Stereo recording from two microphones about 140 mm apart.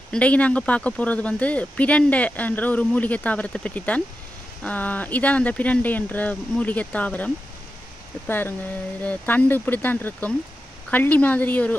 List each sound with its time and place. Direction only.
0.1 s speech: 10° left (ahead or behind)